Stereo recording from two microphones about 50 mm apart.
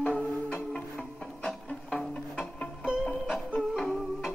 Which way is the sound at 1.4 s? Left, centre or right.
Centre.